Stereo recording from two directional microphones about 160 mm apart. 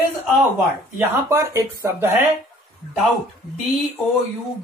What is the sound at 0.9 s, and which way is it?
Speech, 20° right (ahead or behind).